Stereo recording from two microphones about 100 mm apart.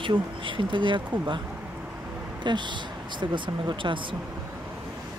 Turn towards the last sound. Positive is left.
turn(degrees=-55)  # may be behind; listen again after turning